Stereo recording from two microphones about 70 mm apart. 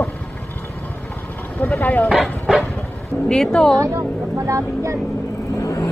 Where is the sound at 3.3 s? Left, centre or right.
Centre.